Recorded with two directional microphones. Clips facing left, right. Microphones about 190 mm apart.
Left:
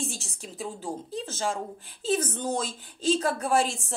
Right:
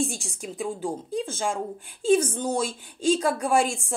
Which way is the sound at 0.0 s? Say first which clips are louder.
Right 7 dB; 15° right (ahead or behind).